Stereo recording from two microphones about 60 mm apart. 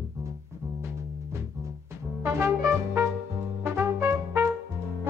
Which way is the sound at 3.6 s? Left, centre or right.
Right.